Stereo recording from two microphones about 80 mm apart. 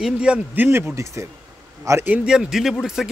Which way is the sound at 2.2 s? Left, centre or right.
Centre.